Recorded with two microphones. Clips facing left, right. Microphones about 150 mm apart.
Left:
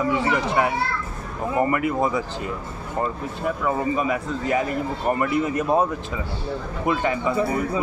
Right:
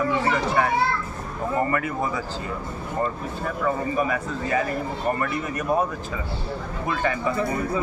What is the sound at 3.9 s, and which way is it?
Speech, 20° left (ahead or behind).